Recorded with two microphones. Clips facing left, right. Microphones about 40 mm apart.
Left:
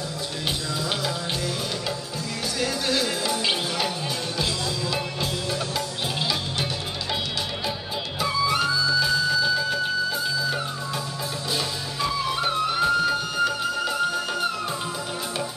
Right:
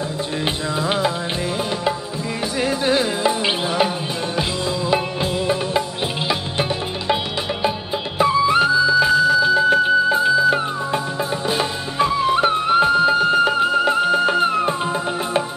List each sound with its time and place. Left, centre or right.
0.7 s music: right
2.6 s music: right
8.2 s music: right